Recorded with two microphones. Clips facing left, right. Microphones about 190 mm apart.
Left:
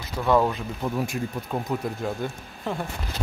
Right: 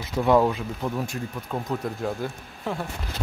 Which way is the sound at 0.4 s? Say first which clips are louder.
Right 1 dB; centre (ahead or behind).